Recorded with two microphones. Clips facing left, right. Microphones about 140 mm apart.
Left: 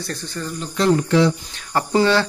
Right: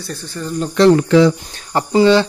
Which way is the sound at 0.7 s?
80° right.